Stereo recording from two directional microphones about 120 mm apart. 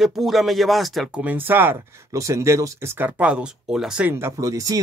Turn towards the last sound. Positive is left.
turn(degrees=-30)  # may be behind; listen again after turning